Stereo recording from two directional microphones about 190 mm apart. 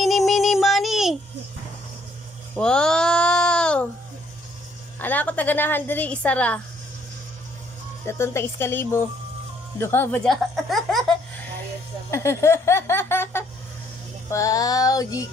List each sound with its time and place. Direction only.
0.0 s synthetic singing: centre (ahead or behind)
2.5 s a sound: 5° left (ahead or behind)
5.0 s a woman's voice: 10° left (ahead or behind)
8.0 s a woman's voice: 15° left (ahead or behind)
12.1 s laughter: 15° left (ahead or behind)
14.3 s music: 15° left (ahead or behind)